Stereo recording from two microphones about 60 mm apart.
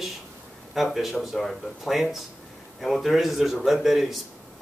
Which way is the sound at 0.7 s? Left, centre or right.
Centre.